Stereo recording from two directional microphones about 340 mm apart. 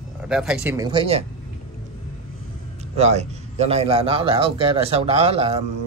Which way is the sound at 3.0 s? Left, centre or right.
Centre.